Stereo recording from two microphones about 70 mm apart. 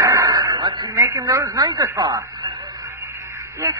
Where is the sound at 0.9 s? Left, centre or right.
Right.